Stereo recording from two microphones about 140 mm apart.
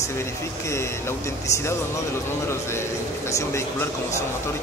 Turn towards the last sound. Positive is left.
turn(degrees=20)  # may be behind; listen again after turning